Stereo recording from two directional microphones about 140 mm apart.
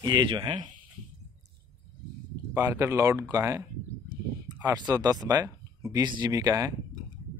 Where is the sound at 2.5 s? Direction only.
20° right (ahead or behind).